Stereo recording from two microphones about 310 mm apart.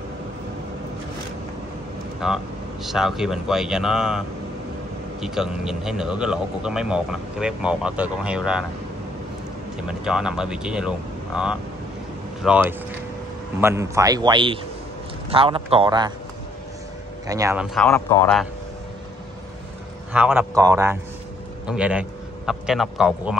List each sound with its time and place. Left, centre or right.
2.1 s a man's voice: centre
5.2 s a man's voice: centre
9.8 s a man's voice: centre
17.3 s a man's voice: centre
17.7 s a man's voice: centre
20.1 s a man's voice: centre